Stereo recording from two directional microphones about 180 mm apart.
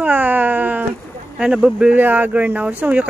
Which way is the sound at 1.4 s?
5° right (ahead or behind).